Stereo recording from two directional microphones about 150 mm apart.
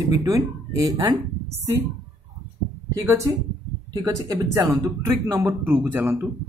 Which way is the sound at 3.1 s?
20° right (ahead or behind).